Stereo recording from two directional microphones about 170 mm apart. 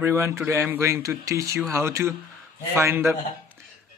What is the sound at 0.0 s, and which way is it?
Speech, 15° right (ahead or behind).